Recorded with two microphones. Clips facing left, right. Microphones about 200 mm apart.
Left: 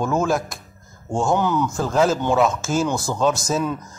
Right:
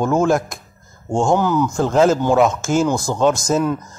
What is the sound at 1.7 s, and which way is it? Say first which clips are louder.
Speech: right 6 dB; 20° right (ahead or behind).